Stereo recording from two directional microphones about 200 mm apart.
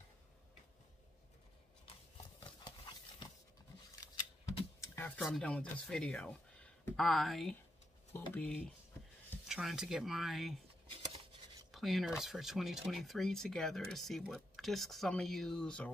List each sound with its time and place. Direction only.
2.4 s horse: 20° left (ahead or behind)
4.0 s a sound: 15° left (ahead or behind)
4.7 s speech: 15° left (ahead or behind)
11.7 s speech: centre (ahead or behind)